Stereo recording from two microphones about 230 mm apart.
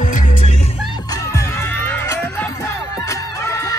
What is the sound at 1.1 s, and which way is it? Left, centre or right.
Music, centre.